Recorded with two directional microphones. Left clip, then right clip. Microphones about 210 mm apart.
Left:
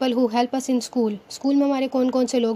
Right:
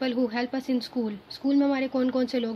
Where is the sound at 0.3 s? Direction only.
30° left (ahead or behind).